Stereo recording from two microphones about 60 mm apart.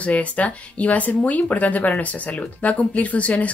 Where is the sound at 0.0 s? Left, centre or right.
Left.